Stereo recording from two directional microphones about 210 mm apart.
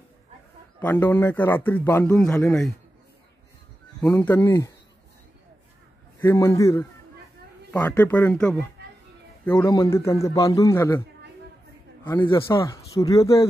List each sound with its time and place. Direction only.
0.7 s speech: 10° left (ahead or behind)
4.0 s speech: 10° left (ahead or behind)
6.2 s speech: 15° left (ahead or behind)
12.1 s speech: 20° left (ahead or behind)